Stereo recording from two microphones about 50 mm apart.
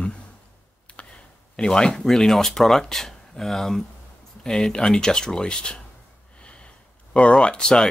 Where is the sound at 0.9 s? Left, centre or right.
Centre.